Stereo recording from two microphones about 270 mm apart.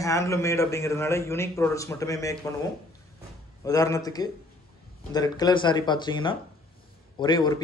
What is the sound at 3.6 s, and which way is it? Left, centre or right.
A man's voice, centre.